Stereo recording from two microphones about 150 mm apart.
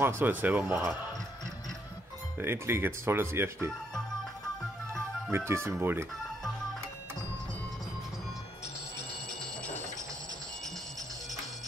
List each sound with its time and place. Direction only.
0.0 s speech: 15° right (ahead or behind)
2.3 s speech: 15° right (ahead or behind)
5.3 s speech: 15° right (ahead or behind)